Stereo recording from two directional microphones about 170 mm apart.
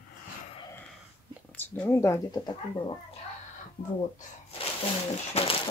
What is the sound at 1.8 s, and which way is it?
Speech, 15° left (ahead or behind).